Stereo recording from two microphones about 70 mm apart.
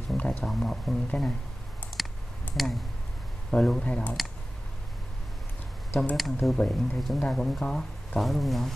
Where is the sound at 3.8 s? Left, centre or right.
Centre.